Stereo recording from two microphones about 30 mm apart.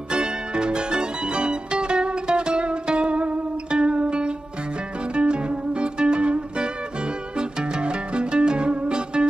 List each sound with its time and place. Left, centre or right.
0.1 s music: right